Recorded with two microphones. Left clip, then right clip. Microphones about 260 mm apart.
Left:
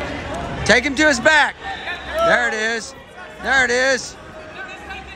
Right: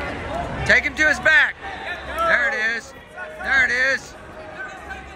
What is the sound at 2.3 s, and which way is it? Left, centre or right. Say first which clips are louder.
Music: left 1 dB; centre.